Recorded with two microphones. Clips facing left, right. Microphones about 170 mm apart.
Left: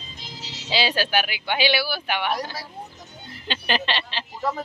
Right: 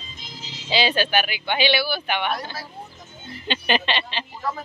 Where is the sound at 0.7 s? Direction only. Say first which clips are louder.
Right 2 dB; 5° left (ahead or behind).